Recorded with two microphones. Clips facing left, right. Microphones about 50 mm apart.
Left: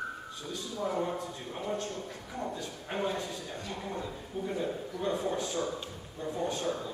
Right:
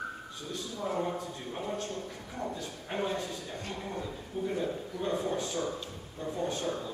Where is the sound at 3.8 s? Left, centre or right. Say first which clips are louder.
Even; centre.